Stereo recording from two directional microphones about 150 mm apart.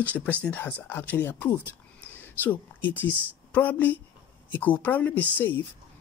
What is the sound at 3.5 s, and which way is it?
Speech, 10° left (ahead or behind).